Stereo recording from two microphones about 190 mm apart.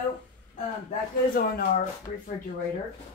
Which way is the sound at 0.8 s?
45° left (ahead or behind).